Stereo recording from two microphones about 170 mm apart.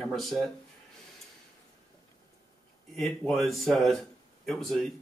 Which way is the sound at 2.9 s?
Centre (ahead or behind).